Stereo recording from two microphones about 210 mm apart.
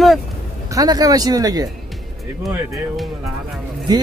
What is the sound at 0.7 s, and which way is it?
Speech, 15° right (ahead or behind).